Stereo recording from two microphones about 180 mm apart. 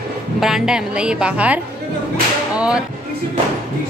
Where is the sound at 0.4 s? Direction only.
Centre (ahead or behind).